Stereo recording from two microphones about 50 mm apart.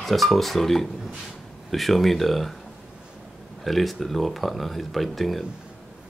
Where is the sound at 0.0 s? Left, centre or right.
Centre.